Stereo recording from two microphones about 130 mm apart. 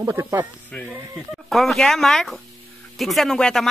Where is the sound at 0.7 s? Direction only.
10° left (ahead or behind).